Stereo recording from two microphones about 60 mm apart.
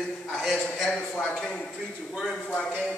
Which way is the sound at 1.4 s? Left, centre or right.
Centre.